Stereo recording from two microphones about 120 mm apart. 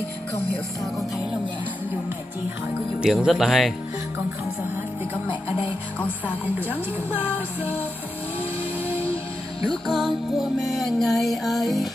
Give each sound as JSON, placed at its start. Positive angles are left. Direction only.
{"t": 3.0, "sound": "music", "side_deg": -5}
{"t": 5.3, "sound": "music", "side_deg": 45}
{"t": 6.2, "sound": "music", "side_deg": -15}
{"t": 9.7, "sound": "music", "side_deg": 0}